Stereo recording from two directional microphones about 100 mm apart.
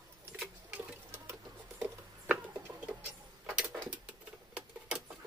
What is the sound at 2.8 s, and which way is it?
Vehicle, 10° right (ahead or behind).